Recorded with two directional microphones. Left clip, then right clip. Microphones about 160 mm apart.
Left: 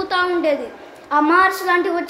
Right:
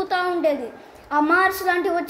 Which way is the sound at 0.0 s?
25° right (ahead or behind).